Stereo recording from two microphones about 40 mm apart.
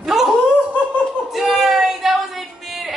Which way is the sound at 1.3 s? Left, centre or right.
Centre.